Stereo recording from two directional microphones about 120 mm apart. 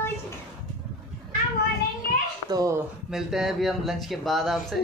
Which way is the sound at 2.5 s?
30° right (ahead or behind).